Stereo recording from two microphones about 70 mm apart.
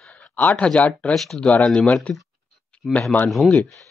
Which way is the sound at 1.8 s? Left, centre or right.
Centre.